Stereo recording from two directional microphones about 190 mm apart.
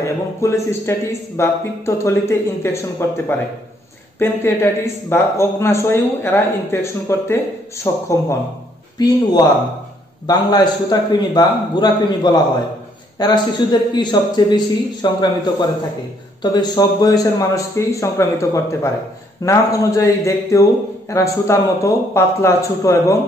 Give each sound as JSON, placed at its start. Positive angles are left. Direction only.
{"t": 0.0, "sound": "a man's voice", "side_deg": 15}
{"t": 16.5, "sound": "a man's voice", "side_deg": 20}